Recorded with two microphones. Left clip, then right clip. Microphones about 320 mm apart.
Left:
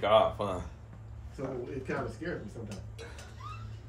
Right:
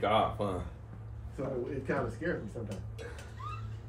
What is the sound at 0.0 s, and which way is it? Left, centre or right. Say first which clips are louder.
Speech: left 4 dB; centre.